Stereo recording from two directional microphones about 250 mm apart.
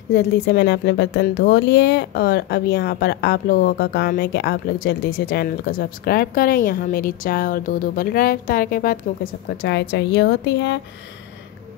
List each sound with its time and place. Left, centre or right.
0.1 s speech: left